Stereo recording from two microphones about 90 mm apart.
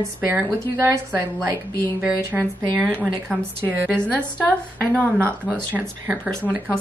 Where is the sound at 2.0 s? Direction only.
20° right (ahead or behind).